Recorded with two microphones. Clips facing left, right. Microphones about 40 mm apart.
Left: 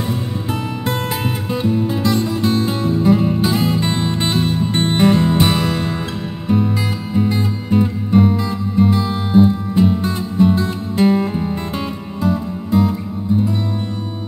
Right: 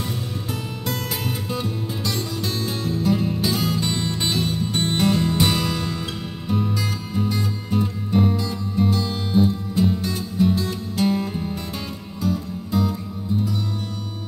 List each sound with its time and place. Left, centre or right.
1.5 s music: left
7.2 s music: left